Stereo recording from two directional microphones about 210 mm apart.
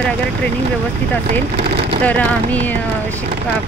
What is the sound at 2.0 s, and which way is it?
Speech, 5° left (ahead or behind).